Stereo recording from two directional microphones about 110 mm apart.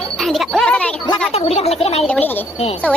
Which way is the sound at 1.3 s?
65° left (ahead or behind).